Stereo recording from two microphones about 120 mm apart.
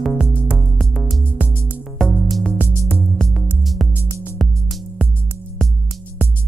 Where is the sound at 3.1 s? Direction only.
Centre (ahead or behind).